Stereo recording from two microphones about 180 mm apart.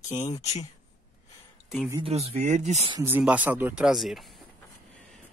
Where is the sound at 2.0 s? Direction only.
35° right (ahead or behind).